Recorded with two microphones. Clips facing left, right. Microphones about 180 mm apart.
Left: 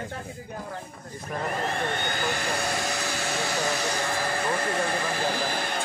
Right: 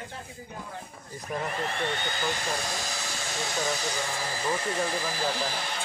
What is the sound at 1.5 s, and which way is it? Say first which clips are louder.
Speech: left 5 dB; 50° left (ahead or behind).